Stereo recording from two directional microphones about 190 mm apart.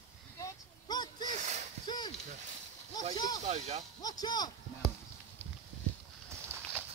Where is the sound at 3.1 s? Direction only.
20° left (ahead or behind).